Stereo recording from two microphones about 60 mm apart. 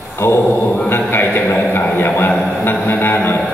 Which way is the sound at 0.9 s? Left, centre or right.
Left.